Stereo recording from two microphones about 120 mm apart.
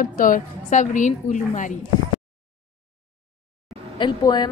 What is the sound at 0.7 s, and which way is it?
A woman's voice, 90° left.